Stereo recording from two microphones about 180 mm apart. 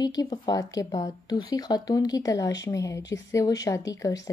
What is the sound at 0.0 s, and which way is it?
Speech, 20° left (ahead or behind).